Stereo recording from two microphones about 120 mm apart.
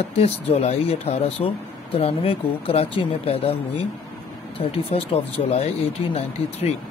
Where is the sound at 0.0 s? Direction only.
60° left (ahead or behind).